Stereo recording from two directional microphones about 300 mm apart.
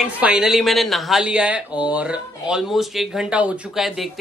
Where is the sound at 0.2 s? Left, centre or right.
Centre.